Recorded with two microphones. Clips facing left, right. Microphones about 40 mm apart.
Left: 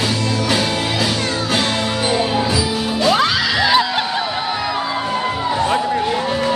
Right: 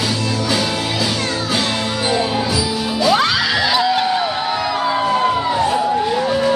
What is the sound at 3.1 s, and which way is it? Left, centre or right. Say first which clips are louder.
Music: even; centre.